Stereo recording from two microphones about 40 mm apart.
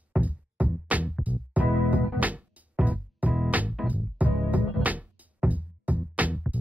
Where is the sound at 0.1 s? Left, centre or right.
Right.